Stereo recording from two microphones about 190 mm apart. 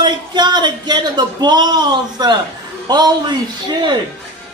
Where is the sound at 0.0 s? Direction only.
25° right (ahead or behind).